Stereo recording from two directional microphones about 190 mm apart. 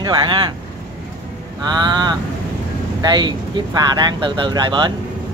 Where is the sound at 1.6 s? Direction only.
20° right (ahead or behind).